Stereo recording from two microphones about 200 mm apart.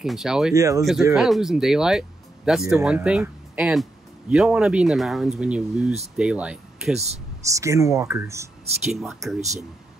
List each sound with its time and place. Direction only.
0.0 s speech: centre (ahead or behind)
0.6 s speech: 15° right (ahead or behind)
1.1 s speech: centre (ahead or behind)
8.8 s speech: centre (ahead or behind)
9.4 s speech: 35° right (ahead or behind)